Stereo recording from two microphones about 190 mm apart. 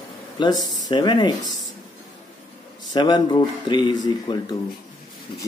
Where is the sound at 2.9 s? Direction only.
25° left (ahead or behind).